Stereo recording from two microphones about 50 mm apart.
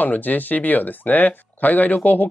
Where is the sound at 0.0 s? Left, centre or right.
Left.